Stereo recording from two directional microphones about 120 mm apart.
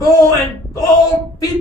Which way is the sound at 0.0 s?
30° left (ahead or behind).